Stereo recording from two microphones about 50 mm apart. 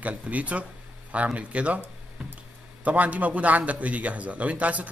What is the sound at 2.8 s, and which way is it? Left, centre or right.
A man's voice, right.